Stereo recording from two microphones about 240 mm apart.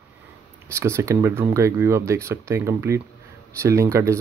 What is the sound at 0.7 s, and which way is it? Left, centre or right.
Speech, centre.